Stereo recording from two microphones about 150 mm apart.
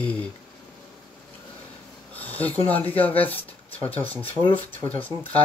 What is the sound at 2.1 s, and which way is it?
Speech, 10° left (ahead or behind).